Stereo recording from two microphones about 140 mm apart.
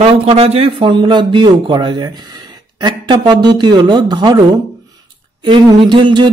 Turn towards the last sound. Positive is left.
turn(degrees=-35)  # may be behind; listen again after turning